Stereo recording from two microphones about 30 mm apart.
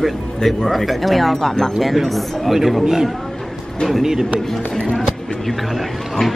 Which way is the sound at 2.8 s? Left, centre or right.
Centre.